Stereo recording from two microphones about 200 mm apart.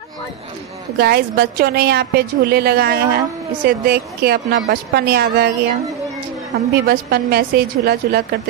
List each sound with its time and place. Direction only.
0.9 s a woman's voice: 50° right (ahead or behind)
6.7 s a woman's voice: 50° right (ahead or behind)